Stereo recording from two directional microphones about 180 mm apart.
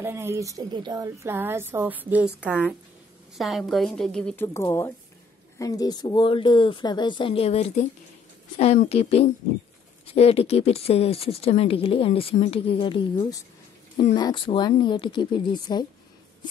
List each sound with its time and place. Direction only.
0.0 s a woman's voice: 15° right (ahead or behind); by 4.5 s 5° left (ahead or behind)
4.6 s a woman's voice: 15° left (ahead or behind)